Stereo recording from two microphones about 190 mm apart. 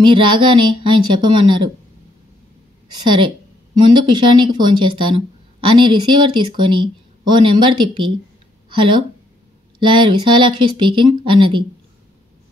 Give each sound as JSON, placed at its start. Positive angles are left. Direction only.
{"t": 0.0, "sound": "speech", "side_deg": -25}
{"t": 3.0, "sound": "speech", "side_deg": -25}